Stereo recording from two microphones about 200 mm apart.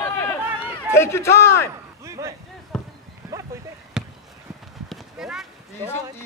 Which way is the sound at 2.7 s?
5° left (ahead or behind).